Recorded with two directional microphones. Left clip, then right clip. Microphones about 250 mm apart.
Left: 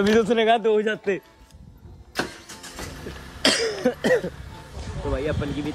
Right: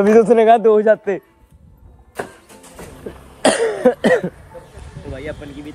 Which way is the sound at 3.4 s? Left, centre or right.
Centre.